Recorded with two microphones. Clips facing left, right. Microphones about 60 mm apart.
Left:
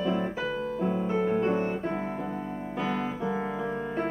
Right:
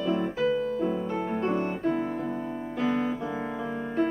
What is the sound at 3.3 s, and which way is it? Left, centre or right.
Piano, centre.